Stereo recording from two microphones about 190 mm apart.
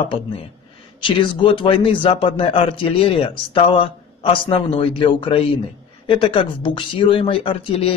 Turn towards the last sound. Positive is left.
turn(degrees=30)  # may be behind; listen again after turning